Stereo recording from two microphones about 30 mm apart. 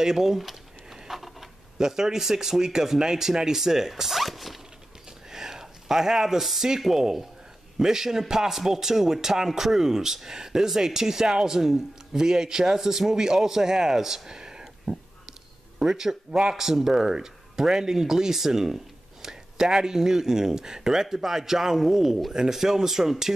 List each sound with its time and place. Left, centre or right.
0.0 s speech: centre
0.4 s a sound: centre
1.8 s speech: centre
3.9 s zipper: centre
5.3 s a sound: centre
6.8 s speech: centre